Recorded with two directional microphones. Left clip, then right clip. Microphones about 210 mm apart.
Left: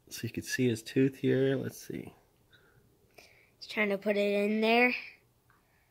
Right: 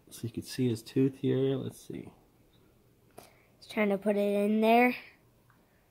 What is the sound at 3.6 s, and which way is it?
Speech, 10° right (ahead or behind).